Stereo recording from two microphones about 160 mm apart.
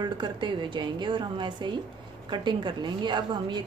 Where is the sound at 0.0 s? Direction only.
30° right (ahead or behind).